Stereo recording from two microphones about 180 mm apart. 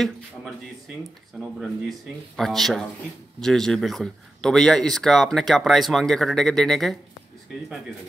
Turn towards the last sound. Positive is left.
turn(degrees=0)  # may be behind; listen again after turning